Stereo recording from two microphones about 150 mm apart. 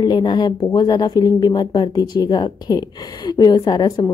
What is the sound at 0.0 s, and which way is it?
A woman's voice, 30° left (ahead or behind).